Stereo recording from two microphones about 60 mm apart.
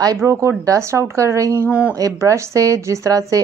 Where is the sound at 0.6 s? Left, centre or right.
Right.